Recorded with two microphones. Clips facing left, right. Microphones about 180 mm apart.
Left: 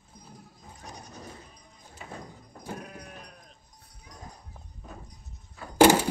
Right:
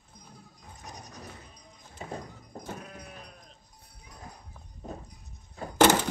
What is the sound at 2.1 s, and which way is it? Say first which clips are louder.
Clip-clop: right 3 dB; 40° right (ahead or behind).